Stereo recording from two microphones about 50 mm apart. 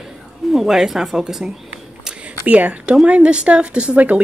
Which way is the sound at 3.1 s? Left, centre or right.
Right.